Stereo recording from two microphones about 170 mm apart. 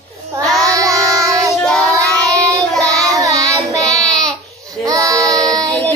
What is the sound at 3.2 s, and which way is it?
Child singing, 20° right (ahead or behind).